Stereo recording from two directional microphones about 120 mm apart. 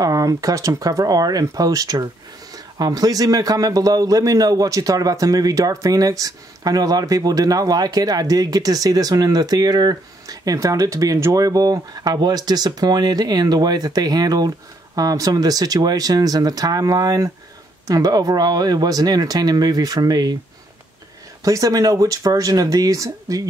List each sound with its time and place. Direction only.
0.0 s a man's voice: 30° right (ahead or behind)
21.5 s speech: 30° right (ahead or behind)